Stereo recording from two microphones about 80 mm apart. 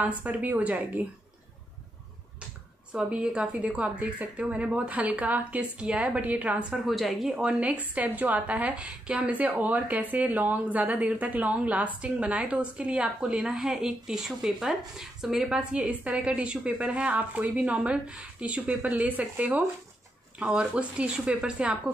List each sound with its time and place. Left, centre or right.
0.0 s a woman's voice: centre
2.9 s a woman's voice: centre
6.9 s speech: centre
7.4 s a woman's voice: centre